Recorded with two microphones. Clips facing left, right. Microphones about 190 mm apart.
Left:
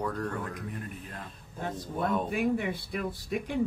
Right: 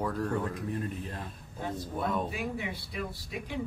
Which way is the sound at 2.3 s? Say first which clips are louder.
Left 7 dB; 50° left (ahead or behind).